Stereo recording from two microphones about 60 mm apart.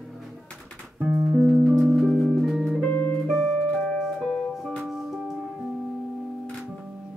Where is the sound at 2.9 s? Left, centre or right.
Left.